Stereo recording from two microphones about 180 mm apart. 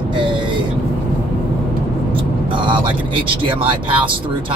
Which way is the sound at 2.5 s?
25° right (ahead or behind).